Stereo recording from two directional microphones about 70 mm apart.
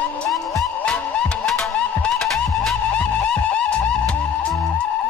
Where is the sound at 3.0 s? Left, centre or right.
Centre.